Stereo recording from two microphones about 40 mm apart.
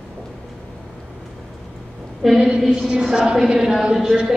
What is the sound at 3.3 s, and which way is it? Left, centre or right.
Speech, centre.